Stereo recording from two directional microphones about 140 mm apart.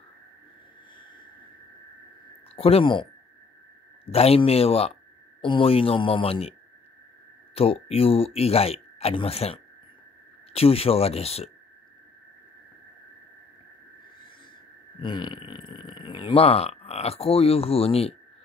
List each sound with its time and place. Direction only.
2.5 s speech: 40° left (ahead or behind)
7.5 s speech: 45° left (ahead or behind)
15.0 s speech: 35° left (ahead or behind)